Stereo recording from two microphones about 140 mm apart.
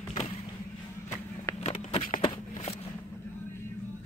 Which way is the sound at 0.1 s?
45° left (ahead or behind).